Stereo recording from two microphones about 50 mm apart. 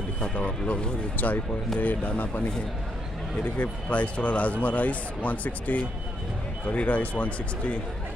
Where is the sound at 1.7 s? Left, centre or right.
Left.